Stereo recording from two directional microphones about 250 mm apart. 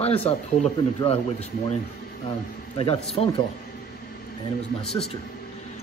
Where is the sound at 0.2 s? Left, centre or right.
Left.